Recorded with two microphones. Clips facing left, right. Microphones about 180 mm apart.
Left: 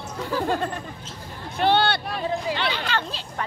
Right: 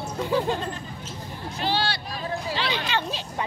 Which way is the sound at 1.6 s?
55° left (ahead or behind).